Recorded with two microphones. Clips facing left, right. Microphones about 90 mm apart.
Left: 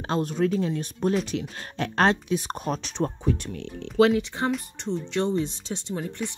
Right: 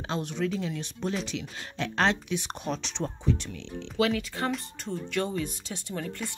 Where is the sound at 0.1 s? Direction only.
40° left (ahead or behind).